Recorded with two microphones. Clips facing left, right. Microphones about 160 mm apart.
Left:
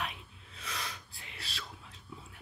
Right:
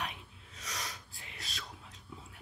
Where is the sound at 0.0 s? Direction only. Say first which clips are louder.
Left 1 dB; 40° right (ahead or behind).